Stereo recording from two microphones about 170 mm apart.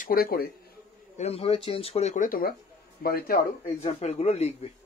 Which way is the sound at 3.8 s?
40° left (ahead or behind).